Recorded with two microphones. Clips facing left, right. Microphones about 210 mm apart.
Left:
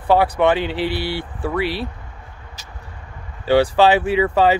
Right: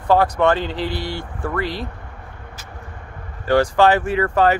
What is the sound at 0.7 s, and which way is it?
Speech, 70° left (ahead or behind).